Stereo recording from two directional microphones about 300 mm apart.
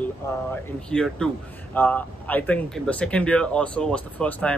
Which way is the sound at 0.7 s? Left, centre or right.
Centre.